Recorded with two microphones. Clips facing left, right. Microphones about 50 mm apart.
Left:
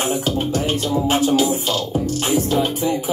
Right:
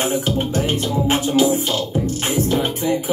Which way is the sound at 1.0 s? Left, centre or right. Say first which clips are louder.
Right 1 dB; right.